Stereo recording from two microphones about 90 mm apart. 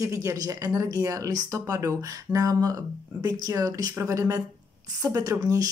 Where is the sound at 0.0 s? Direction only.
35° right (ahead or behind).